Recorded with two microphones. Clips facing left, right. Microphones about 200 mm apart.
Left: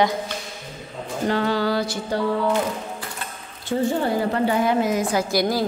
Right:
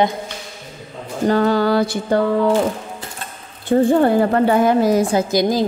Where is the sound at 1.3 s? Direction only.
45° right (ahead or behind).